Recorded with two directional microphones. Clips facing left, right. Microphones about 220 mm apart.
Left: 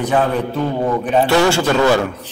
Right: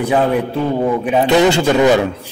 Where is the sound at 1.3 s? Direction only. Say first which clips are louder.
Right 5 dB; 20° right (ahead or behind).